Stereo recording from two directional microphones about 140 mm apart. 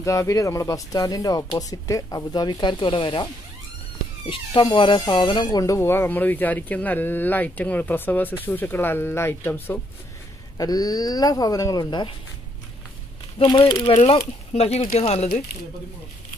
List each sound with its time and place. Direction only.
0.0 s speech: 20° left (ahead or behind); by 3.3 s 35° left (ahead or behind)
4.3 s speech: 35° left (ahead or behind); by 9.8 s 15° left (ahead or behind)
10.6 s speech: 25° left (ahead or behind)
13.4 s speech: 40° left (ahead or behind)